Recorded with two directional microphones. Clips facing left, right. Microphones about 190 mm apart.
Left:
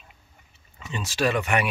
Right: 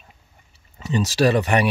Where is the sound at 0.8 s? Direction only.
40° right (ahead or behind).